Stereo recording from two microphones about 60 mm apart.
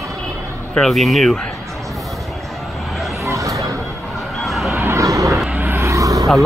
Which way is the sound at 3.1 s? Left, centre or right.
Right.